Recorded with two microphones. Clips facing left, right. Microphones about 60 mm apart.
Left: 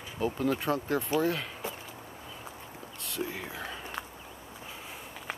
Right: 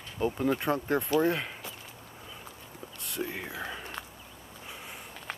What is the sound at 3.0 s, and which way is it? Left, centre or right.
Speech, centre.